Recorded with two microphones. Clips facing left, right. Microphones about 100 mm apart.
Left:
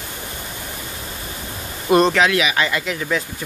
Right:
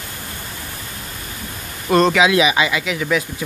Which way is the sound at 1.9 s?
Centre (ahead or behind).